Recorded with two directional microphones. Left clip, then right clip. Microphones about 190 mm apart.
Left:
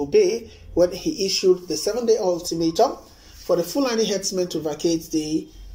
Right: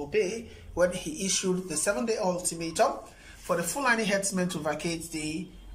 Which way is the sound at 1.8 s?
25° left (ahead or behind).